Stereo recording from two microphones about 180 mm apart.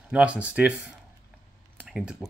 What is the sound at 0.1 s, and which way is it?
Speech, 5° right (ahead or behind).